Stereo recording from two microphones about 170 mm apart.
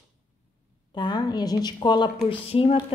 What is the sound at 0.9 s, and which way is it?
A woman's voice, 25° left (ahead or behind).